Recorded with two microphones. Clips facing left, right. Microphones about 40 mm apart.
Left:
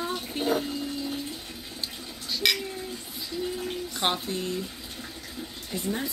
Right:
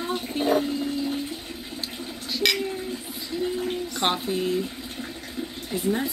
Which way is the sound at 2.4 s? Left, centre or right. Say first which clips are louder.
Right 2 dB; centre.